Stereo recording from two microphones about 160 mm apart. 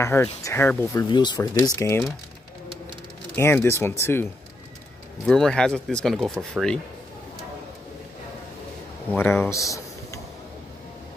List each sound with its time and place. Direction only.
0.0 s speech: 15° left (ahead or behind)
0.9 s speech: 25° left (ahead or behind)
3.3 s speech: 15° left (ahead or behind)
5.2 s speech: 5° left (ahead or behind)
9.1 s speech: 15° left (ahead or behind)